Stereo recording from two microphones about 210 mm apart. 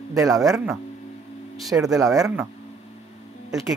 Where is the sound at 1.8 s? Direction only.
15° right (ahead or behind).